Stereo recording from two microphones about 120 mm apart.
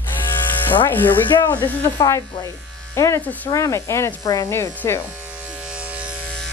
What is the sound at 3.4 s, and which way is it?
Speech, 25° left (ahead or behind).